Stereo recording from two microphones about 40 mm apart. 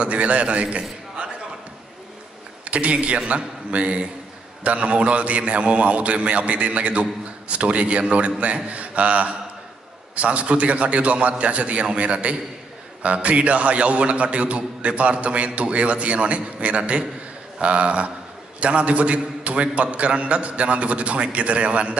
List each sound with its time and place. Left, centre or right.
0.0 s a man's voice: right
2.6 s a man's voice: right